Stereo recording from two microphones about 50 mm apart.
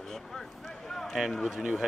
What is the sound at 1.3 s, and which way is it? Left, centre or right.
Speech, centre.